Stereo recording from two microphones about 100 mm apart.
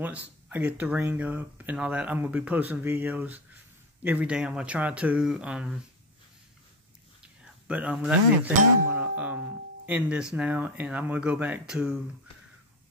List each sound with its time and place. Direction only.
0.0 s speech: 20° right (ahead or behind)
7.6 s speech: 10° right (ahead or behind)